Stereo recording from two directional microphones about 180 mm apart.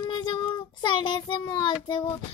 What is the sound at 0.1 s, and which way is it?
Child singing, 25° left (ahead or behind).